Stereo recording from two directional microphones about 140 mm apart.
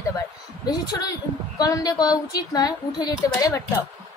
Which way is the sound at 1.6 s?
25° left (ahead or behind).